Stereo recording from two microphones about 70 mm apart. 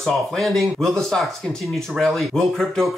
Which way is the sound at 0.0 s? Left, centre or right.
Centre.